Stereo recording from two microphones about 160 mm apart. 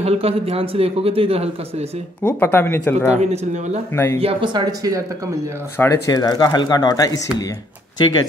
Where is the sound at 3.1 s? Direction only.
45° right (ahead or behind).